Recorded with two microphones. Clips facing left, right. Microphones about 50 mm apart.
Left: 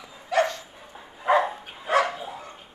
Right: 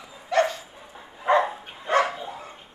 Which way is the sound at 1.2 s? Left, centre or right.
Centre.